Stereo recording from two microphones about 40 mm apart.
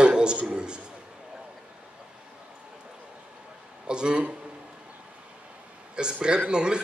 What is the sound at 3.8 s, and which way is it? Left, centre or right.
Speech, right.